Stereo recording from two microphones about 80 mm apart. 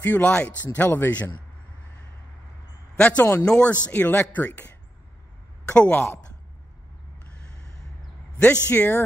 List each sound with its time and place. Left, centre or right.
0.0 s speech: centre
3.0 s speech: centre
8.4 s speech: centre